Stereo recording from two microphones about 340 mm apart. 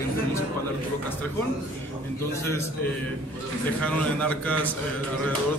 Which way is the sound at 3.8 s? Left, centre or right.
Centre.